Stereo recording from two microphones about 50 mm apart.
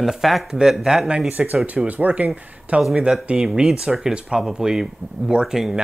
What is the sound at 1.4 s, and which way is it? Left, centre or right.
Speech, right.